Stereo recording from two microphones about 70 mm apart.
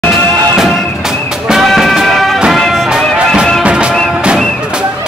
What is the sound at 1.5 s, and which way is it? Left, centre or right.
Music, centre.